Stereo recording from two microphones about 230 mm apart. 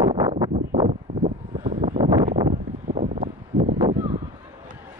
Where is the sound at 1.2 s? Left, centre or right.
Right.